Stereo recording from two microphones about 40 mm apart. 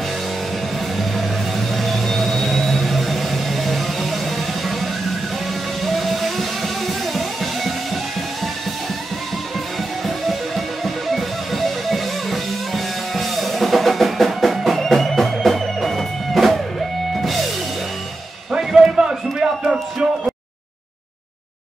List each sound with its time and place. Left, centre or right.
1.8 s a sound: centre
5.9 s music: centre
10.0 s music: centre
18.6 s music: centre